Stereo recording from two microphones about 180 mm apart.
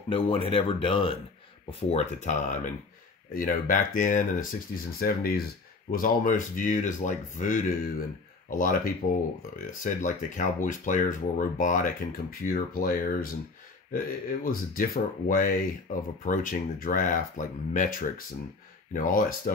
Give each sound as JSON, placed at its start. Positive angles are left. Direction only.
{"t": 0.1, "sound": "speech", "side_deg": 30}